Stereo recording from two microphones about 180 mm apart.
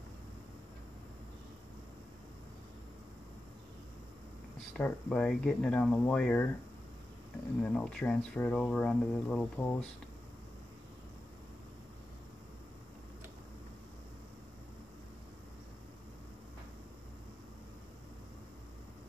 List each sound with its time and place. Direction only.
4.7 s speech: 5° left (ahead or behind)
7.6 s speech: 5° left (ahead or behind)